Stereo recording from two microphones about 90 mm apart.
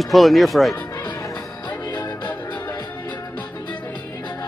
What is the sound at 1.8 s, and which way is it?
Music, 40° left (ahead or behind).